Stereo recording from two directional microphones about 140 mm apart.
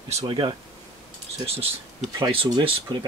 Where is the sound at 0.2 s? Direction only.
35° right (ahead or behind).